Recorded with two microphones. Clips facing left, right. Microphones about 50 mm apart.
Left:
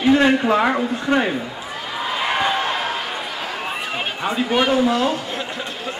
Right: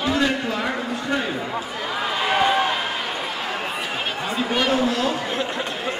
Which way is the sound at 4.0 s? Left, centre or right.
Centre.